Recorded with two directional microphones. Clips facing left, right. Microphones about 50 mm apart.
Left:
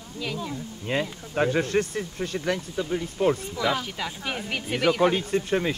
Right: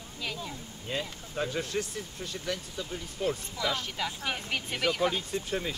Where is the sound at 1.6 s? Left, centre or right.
Left.